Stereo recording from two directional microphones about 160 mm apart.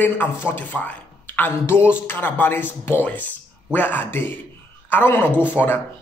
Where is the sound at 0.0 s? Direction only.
10° left (ahead or behind).